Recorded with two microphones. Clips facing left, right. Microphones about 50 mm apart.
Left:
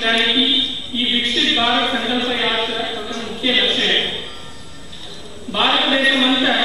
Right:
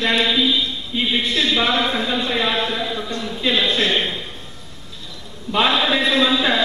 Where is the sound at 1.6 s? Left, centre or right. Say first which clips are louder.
Left 2 dB; left.